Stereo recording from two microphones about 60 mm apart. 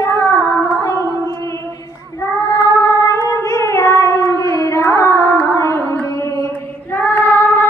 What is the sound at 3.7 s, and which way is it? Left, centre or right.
Cat, left.